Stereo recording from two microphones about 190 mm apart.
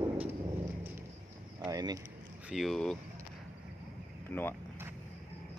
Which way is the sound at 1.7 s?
20° right (ahead or behind).